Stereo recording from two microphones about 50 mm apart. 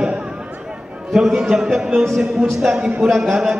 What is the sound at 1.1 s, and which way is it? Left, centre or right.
Speech, centre.